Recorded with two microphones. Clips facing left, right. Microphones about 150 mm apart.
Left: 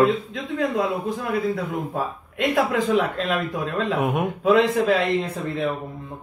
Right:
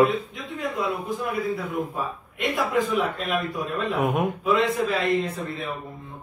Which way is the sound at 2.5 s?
90° left.